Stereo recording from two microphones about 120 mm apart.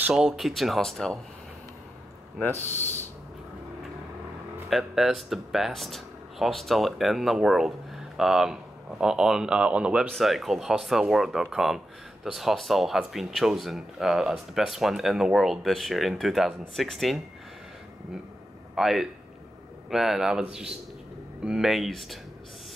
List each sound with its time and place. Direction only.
0.0 s speech: 5° right (ahead or behind)
2.4 s a man's voice: 15° left (ahead or behind)
4.6 s speech: centre (ahead or behind)
18.8 s speech: centre (ahead or behind)